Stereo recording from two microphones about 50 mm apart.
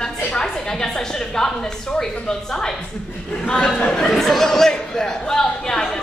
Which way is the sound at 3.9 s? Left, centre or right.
Centre.